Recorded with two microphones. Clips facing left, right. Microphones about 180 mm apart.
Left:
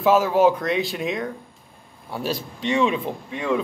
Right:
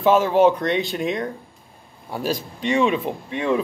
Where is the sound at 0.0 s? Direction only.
Centre (ahead or behind).